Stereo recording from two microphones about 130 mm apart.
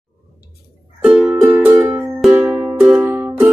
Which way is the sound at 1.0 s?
5° right (ahead or behind).